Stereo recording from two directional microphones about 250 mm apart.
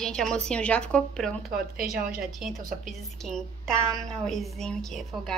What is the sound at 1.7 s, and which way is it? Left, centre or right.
Speech, right.